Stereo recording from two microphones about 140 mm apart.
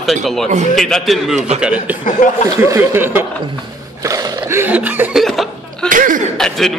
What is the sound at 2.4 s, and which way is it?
Speech, 20° right (ahead or behind).